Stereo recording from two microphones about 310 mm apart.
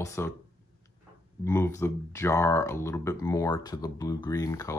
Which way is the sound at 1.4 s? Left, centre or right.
Centre.